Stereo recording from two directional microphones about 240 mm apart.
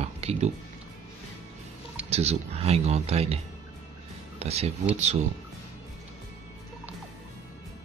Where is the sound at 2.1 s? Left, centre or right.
Right.